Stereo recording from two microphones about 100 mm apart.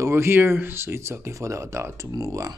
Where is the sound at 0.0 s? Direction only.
25° right (ahead or behind).